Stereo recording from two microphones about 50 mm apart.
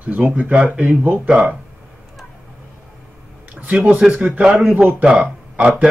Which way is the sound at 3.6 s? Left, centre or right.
Right.